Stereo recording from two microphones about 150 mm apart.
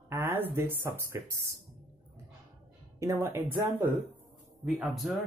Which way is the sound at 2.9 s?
20° right (ahead or behind).